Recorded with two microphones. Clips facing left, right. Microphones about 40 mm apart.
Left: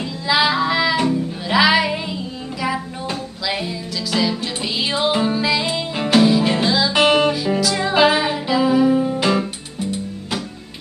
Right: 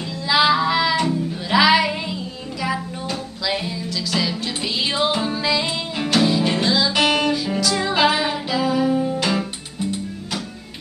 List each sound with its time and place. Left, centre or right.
0.3 s child singing: centre
1.5 s music: centre
3.4 s music: centre
6.9 s music: left
7.4 s music: centre